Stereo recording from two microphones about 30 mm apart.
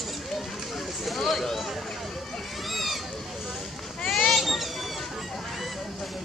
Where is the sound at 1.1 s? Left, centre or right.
Centre.